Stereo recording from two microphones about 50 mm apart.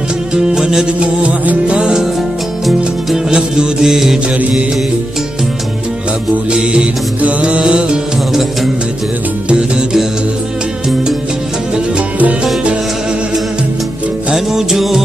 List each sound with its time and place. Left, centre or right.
0.3 s music: centre
0.9 s music: right
1.8 s music: centre
3.3 s music: centre
4.4 s music: right
6.5 s music: centre
9.5 s music: right
14.3 s music: centre